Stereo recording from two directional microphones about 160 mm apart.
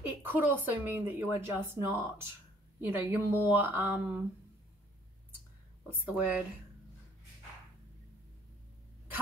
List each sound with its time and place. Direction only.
0.0 s speech: 10° right (ahead or behind)
5.9 s speech: 10° right (ahead or behind)